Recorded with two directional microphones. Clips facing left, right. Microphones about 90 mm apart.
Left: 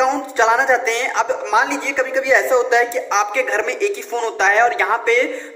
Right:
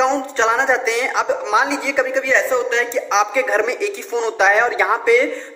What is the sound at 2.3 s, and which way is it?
Speech, 15° left (ahead or behind).